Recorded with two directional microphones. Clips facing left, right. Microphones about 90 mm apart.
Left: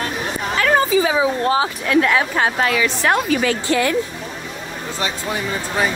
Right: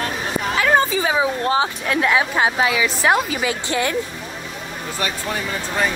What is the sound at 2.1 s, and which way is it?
A woman's voice, 10° right (ahead or behind).